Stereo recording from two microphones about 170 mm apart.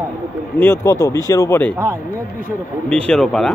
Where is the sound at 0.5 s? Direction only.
15° left (ahead or behind).